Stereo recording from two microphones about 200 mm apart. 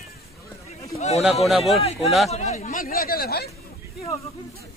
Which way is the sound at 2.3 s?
35° left (ahead or behind).